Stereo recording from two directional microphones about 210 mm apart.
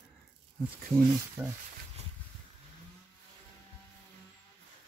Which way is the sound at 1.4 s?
10° right (ahead or behind).